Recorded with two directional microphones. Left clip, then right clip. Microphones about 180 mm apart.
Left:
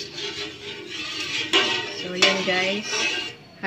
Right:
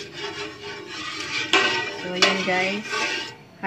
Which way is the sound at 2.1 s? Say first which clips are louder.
Left 1 dB; 15° right (ahead or behind).